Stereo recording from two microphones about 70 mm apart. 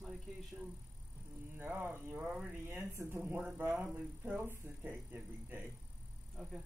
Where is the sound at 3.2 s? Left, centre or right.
Centre.